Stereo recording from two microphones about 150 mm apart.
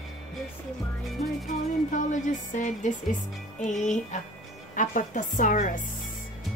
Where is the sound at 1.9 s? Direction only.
55° left (ahead or behind).